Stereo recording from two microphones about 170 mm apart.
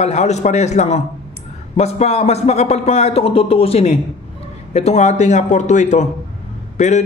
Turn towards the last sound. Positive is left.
turn(degrees=45)  # may be behind; listen again after turning